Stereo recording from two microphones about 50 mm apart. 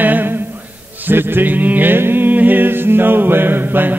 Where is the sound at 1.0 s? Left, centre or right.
Right.